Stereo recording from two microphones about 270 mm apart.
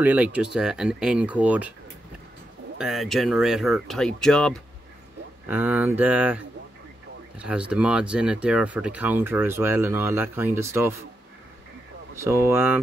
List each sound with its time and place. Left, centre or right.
0.0 s speech: centre
2.8 s speech: centre
12.2 s speech: centre